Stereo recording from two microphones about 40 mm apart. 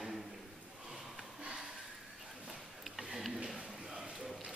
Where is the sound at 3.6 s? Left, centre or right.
Centre.